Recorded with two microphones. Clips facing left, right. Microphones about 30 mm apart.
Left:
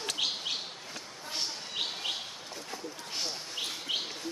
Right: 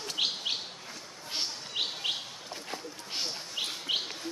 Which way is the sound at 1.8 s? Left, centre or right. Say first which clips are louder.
Right 2 dB; centre.